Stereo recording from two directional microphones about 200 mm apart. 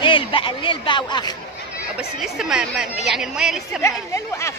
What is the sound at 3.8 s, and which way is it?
Speech, 15° left (ahead or behind).